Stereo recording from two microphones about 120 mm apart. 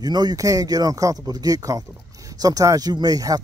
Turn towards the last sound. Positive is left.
turn(degrees=-30)  # may be behind; listen again after turning